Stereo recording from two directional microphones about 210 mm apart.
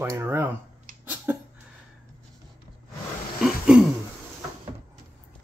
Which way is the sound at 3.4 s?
Centre (ahead or behind).